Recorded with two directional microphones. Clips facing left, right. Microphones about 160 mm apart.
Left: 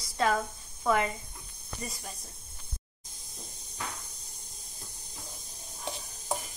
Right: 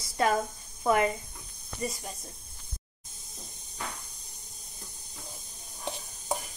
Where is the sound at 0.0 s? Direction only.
25° right (ahead or behind).